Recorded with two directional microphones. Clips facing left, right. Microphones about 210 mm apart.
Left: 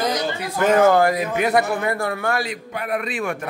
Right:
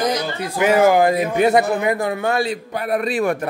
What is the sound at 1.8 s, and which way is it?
A man's voice, 20° right (ahead or behind).